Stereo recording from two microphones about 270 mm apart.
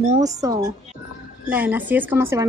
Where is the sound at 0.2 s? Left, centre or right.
Centre.